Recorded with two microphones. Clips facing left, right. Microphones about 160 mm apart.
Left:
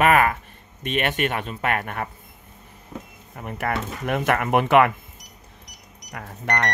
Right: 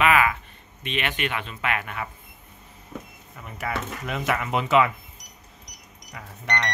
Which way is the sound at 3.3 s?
55° left (ahead or behind).